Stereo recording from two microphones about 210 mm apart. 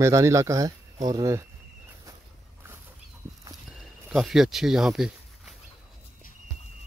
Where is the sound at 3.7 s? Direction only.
Centre (ahead or behind).